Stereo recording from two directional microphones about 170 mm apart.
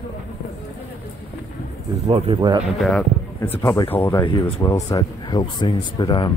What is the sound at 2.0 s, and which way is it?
Speech, 35° right (ahead or behind).